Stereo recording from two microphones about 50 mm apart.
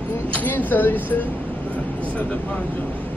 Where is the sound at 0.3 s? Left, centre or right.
Left.